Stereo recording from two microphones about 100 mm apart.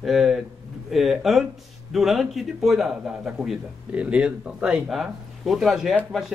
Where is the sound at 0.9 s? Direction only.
Centre (ahead or behind).